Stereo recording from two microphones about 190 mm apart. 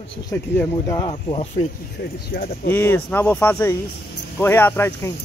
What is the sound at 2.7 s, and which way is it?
Speech, 10° left (ahead or behind).